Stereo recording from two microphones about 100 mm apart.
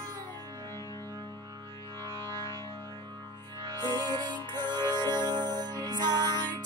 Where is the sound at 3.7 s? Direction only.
40° right (ahead or behind).